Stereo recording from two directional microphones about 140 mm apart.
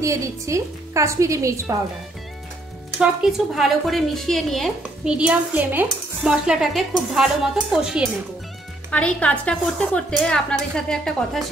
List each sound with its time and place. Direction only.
0.0 s a woman's voice: 20° right (ahead or behind)
3.0 s a woman's voice: 5° right (ahead or behind)
8.9 s a woman's voice: 10° left (ahead or behind)